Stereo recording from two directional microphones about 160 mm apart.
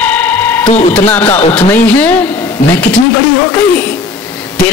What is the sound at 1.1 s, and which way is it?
Speech, 10° left (ahead or behind).